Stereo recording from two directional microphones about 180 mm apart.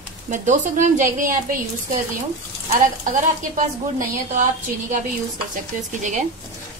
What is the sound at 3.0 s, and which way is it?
A woman's voice, 45° right (ahead or behind).